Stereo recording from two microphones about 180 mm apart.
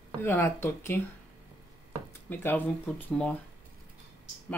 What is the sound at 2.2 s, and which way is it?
Speech, 10° left (ahead or behind).